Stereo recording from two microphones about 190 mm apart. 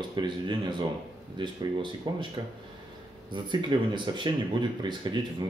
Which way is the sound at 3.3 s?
25° right (ahead or behind).